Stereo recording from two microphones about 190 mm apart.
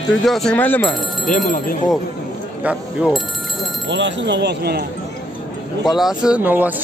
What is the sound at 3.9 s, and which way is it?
Speech, 70° right (ahead or behind).